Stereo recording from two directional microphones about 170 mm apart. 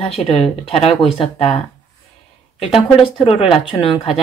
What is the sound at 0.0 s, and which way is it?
Speech, 35° left (ahead or behind).